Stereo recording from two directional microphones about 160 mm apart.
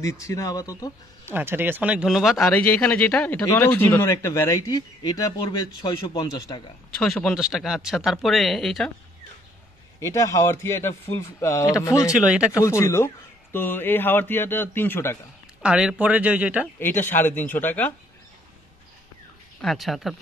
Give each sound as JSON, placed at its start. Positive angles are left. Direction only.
{"t": 0.0, "sound": "speech", "side_deg": 20}
{"t": 1.2, "sound": "speech", "side_deg": -15}
{"t": 2.5, "sound": "speech", "side_deg": 10}
{"t": 7.0, "sound": "speech", "side_deg": 5}
{"t": 9.9, "sound": "speech", "side_deg": 20}
{"t": 12.1, "sound": "speech", "side_deg": -5}
{"t": 12.5, "sound": "speech", "side_deg": 20}
{"t": 15.6, "sound": "speech", "side_deg": -5}
{"t": 16.8, "sound": "speech", "side_deg": 10}
{"t": 19.6, "sound": "speech", "side_deg": 0}